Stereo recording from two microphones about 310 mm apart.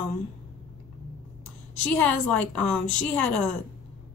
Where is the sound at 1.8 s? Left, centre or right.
Centre.